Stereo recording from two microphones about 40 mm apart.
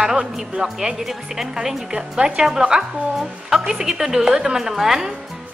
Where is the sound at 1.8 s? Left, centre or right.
Right.